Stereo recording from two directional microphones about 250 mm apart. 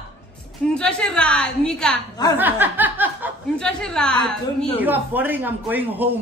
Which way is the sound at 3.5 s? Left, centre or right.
Centre.